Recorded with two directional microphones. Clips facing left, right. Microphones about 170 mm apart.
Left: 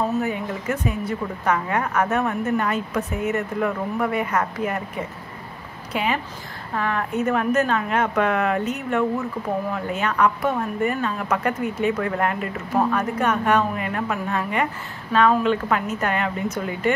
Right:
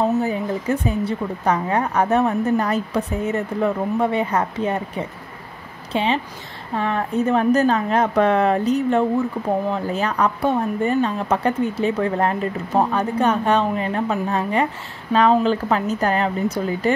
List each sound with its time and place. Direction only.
0.2 s a woman's voice: 30° right (ahead or behind)